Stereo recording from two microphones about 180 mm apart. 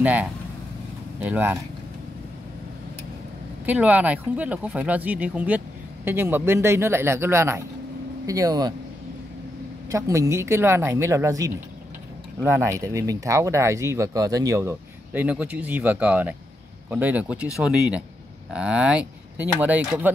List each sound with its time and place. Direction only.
0.0 s speech: 10° right (ahead or behind)
3.6 s speech: 10° right (ahead or behind)
9.8 s speech: 15° right (ahead or behind)